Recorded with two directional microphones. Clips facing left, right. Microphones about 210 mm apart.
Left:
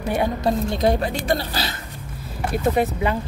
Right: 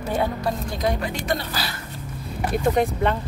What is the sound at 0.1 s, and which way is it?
Speech, 20° left (ahead or behind).